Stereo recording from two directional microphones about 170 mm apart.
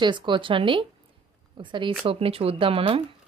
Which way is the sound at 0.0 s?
30° right (ahead or behind).